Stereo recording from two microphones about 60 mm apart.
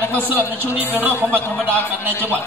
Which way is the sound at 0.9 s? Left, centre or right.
Right.